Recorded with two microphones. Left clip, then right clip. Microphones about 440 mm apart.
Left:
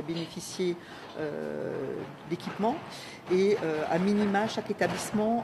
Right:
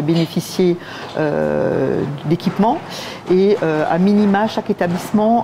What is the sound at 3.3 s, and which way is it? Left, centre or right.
Speech, right.